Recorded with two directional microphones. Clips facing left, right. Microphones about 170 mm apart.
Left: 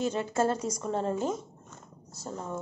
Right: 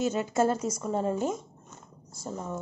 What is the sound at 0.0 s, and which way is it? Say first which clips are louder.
Speech: right 2 dB; 10° right (ahead or behind).